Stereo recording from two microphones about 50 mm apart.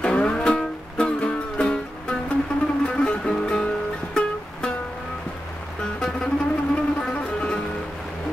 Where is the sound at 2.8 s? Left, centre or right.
Centre.